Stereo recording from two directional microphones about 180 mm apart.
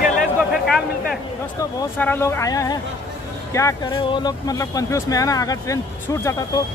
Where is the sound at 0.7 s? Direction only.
Centre (ahead or behind).